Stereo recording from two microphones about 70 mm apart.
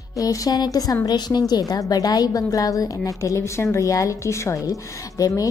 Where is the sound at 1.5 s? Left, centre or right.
Left.